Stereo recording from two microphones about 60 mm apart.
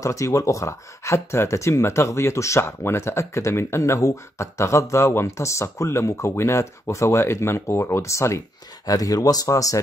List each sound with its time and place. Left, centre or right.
0.0 s speech: left
8.8 s speech: left